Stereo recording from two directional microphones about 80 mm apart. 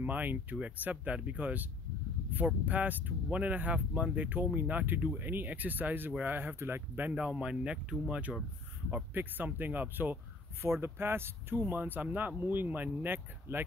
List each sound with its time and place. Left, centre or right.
0.0 s speech: right
7.1 s speech: centre